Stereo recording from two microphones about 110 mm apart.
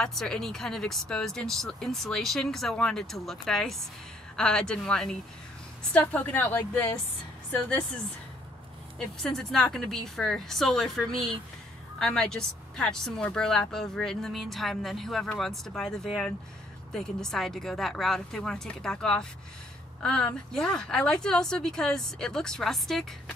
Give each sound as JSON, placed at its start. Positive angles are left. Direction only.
{"t": 0.0, "sound": "a woman's voice", "side_deg": 5}
{"t": 8.9, "sound": "a woman's voice", "side_deg": 5}